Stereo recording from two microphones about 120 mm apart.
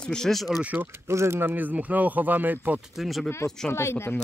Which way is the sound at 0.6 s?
15° right (ahead or behind).